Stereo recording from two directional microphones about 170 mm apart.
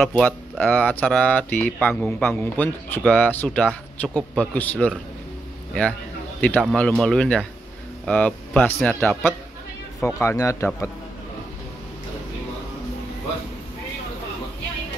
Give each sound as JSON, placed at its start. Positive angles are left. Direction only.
{"t": 0.0, "sound": "speech", "side_deg": 10}
{"t": 6.6, "sound": "speech", "side_deg": 5}